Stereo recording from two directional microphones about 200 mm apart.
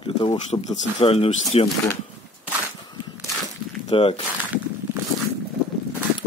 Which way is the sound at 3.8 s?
35° left (ahead or behind).